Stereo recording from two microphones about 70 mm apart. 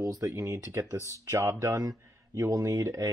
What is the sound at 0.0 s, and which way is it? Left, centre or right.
Speech, right.